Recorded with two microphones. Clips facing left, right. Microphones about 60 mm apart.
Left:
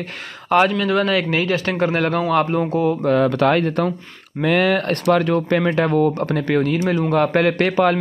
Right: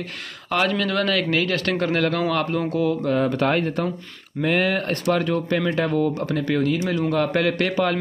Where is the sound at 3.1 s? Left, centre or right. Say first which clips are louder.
Left 7 dB; left.